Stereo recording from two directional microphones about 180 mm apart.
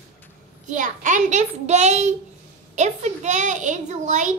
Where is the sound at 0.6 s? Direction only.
45° right (ahead or behind).